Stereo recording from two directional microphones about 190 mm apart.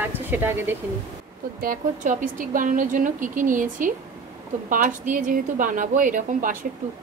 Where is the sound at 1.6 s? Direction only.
45° right (ahead or behind).